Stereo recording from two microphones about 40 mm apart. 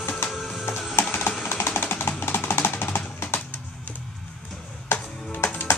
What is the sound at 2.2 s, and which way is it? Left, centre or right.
Music, left.